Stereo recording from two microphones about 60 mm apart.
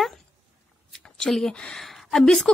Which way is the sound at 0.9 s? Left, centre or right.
Centre.